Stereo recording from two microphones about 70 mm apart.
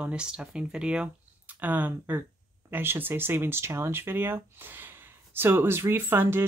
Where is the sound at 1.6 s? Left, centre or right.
Right.